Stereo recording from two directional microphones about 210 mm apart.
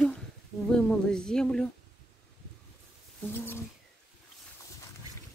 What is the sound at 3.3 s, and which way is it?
Bird, 10° left (ahead or behind).